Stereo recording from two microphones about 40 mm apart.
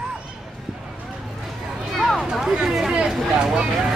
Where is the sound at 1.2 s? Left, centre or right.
Centre.